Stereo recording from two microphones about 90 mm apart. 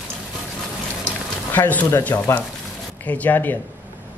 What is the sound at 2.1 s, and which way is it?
Speech, 30° left (ahead or behind).